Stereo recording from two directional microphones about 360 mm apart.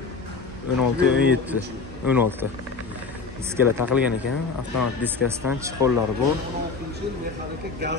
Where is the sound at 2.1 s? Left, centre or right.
Centre.